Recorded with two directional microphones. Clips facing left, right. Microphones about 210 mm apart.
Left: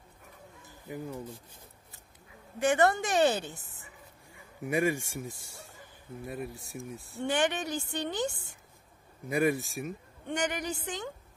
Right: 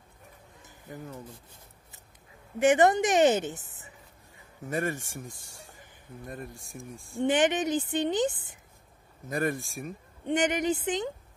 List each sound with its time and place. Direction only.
0.8 s speech: 10° left (ahead or behind)
2.6 s a woman's voice: 20° right (ahead or behind)
4.6 s speech: 10° left (ahead or behind)
7.2 s a woman's voice: 20° right (ahead or behind)
9.3 s speech: 10° left (ahead or behind)
10.2 s a woman's voice: 20° right (ahead or behind)